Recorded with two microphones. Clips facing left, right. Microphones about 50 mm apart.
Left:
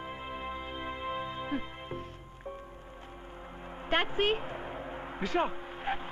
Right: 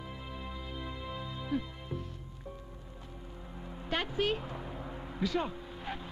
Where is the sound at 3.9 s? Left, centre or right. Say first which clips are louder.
Left 4 dB; left.